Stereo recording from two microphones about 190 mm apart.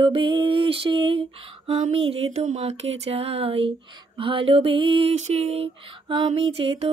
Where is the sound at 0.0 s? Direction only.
25° right (ahead or behind).